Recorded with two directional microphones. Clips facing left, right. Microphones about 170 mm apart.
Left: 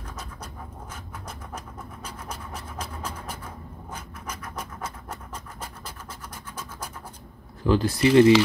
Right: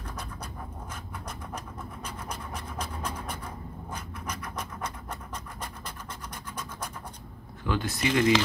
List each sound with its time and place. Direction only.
2.2 s scratch: 5° left (ahead or behind)
3.9 s scratch: 10° left (ahead or behind)
7.6 s speech: 30° left (ahead or behind)